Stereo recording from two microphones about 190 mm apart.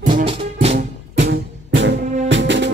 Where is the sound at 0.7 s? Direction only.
70° right (ahead or behind).